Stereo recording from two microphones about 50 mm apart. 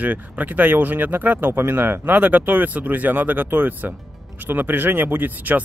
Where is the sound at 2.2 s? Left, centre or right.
Right.